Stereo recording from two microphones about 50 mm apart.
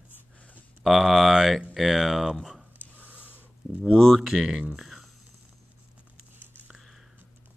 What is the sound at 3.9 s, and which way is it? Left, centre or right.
Speech, centre.